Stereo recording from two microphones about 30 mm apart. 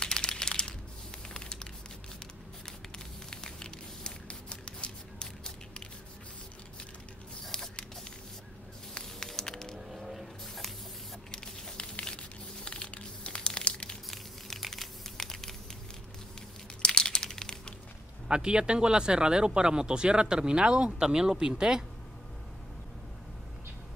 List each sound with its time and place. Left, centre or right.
0.0 s crumpling: left
3.3 s a sound: left
7.5 s rodents: left
9.2 s music: centre
9.8 s vehicle: centre
11.3 s a sound: left
11.7 s crumpling: left
14.1 s crumpling: centre
16.8 s crumpling: left
18.3 s speech: right